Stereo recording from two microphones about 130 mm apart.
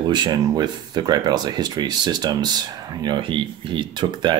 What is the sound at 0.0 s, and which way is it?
Speech, 35° right (ahead or behind).